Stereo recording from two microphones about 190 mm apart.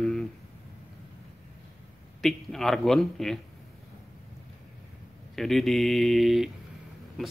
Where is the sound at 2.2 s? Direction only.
Centre (ahead or behind).